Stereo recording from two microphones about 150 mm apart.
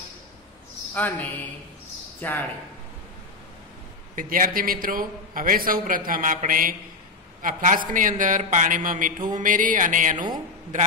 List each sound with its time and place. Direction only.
0.9 s speech: 10° left (ahead or behind)
4.1 s a man's voice: 65° right (ahead or behind)